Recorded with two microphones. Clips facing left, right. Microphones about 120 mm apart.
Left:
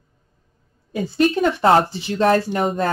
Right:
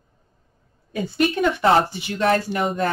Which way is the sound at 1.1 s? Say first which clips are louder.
Left 3 dB; 30° left (ahead or behind).